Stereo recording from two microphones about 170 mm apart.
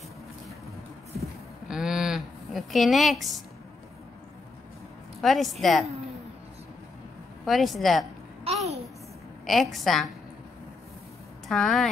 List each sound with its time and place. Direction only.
1.2 s a sound: 5° right (ahead or behind)
5.2 s a woman's voice: centre (ahead or behind)
7.4 s a woman's voice: centre (ahead or behind)
8.5 s a sound: 35° right (ahead or behind)
9.5 s a woman's voice: centre (ahead or behind)
11.4 s speech: centre (ahead or behind)